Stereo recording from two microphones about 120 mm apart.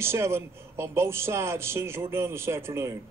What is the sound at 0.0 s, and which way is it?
A man's voice, 20° right (ahead or behind).